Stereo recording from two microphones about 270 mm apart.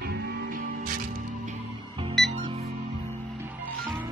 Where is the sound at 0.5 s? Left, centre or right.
Right.